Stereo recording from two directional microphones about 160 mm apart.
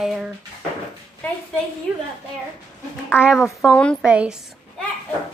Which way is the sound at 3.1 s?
5° right (ahead or behind).